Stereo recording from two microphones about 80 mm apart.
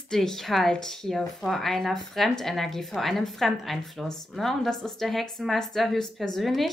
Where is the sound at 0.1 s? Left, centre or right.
Centre.